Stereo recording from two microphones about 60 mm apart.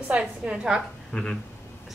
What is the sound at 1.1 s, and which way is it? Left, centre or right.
Speech, centre.